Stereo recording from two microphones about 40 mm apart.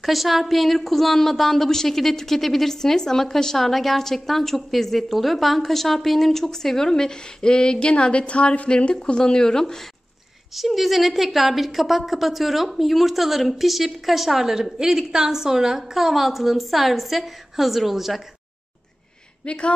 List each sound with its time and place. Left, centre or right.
0.0 s a woman's voice: centre; by 8.9 s left
8.9 s a woman's voice: centre
10.5 s a woman's voice: centre
19.4 s speech: left